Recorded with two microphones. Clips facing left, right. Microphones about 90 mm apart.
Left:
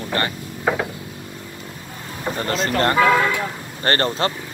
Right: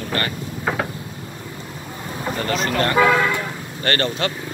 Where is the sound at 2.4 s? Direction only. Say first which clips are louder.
Left 1 dB; 35° left (ahead or behind).